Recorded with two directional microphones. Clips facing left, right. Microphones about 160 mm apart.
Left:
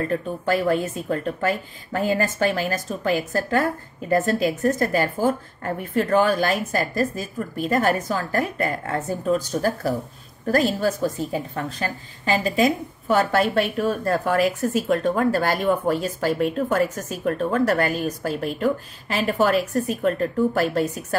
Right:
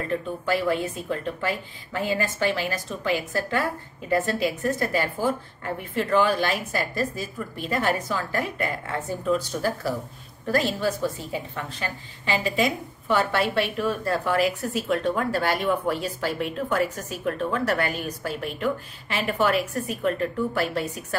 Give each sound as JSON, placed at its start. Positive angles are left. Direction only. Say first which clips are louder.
{"t": 0.5, "sound": "a woman's voice", "louder": "left 3 dB", "side_deg": 45}